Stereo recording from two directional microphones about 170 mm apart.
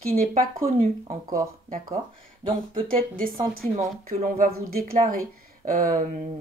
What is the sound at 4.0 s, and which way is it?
Speech, 55° right (ahead or behind).